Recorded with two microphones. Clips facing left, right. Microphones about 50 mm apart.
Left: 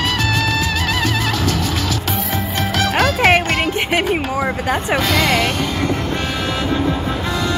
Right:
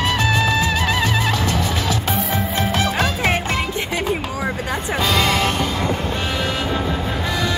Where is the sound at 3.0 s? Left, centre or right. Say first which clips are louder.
Left 6 dB; left.